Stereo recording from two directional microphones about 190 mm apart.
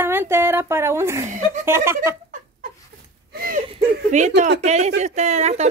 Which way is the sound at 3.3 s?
50° right (ahead or behind).